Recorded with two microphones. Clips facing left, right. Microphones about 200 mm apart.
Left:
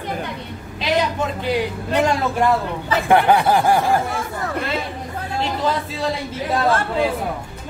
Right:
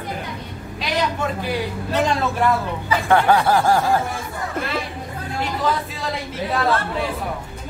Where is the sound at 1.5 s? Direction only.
15° left (ahead or behind).